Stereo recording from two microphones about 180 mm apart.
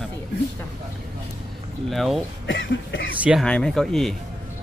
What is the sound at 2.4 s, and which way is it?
Speech, 80° left.